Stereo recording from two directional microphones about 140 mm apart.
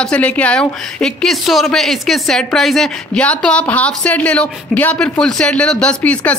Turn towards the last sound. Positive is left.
turn(degrees=10)  # may be behind; listen again after turning